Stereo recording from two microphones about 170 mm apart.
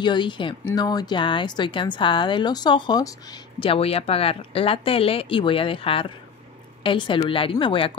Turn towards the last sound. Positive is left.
turn(degrees=30)  # may be behind; listen again after turning